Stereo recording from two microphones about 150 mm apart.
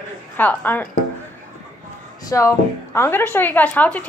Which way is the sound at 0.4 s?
10° left (ahead or behind).